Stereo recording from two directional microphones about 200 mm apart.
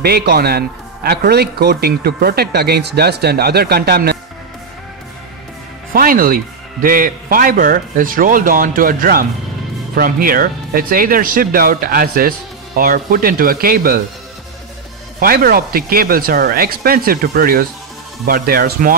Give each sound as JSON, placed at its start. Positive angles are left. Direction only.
{"t": 0.0, "sound": "a man's voice", "side_deg": -55}
{"t": 5.9, "sound": "a man's voice", "side_deg": -45}
{"t": 15.1, "sound": "a man's voice", "side_deg": -45}